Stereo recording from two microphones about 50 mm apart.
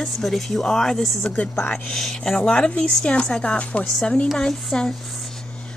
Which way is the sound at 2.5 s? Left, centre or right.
Left.